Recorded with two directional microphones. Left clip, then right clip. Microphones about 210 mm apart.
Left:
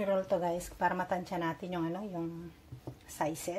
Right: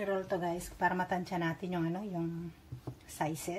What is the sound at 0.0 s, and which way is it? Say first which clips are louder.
A woman's voice: left 3 dB; 20° left (ahead or behind).